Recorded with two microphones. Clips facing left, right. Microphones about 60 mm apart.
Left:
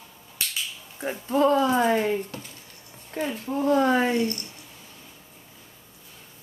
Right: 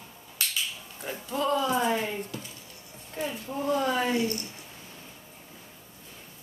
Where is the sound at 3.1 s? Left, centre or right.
Left.